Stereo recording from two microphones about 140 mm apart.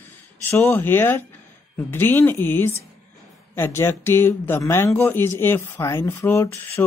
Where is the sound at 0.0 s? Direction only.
15° left (ahead or behind).